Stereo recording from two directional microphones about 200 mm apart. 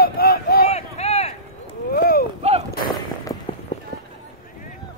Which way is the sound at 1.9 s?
50° left (ahead or behind).